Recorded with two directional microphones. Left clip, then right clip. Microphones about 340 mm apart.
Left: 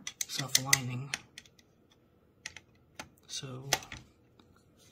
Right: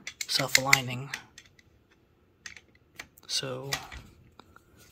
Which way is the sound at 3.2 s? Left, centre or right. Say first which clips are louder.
Right 11 dB; centre.